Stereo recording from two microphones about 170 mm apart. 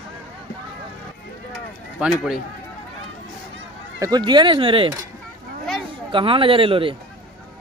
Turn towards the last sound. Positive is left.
turn(degrees=-30)  # may be behind; listen again after turning